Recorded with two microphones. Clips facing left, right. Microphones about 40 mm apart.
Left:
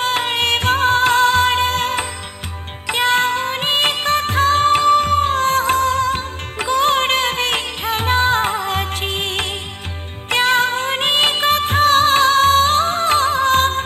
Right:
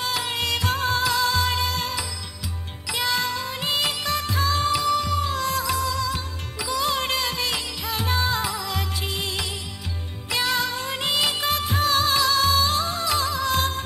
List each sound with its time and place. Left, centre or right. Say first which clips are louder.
0.0 s music: left 8 dB; left
10.3 s music of bollywood: left 9 dB; left